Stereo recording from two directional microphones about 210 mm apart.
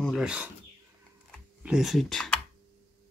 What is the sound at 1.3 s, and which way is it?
Computer keyboard, centre (ahead or behind).